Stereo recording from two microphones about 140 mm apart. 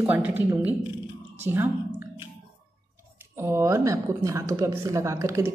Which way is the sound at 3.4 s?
20° right (ahead or behind).